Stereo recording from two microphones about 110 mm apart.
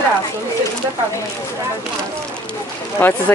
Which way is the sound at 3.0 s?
20° left (ahead or behind).